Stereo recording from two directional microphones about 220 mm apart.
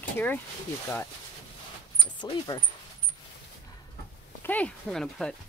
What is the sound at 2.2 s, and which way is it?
Speech, 20° left (ahead or behind).